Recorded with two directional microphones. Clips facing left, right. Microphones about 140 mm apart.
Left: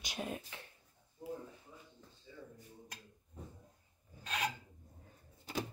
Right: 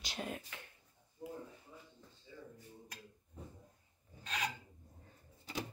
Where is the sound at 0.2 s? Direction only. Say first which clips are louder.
Left 2 dB; 20° left (ahead or behind).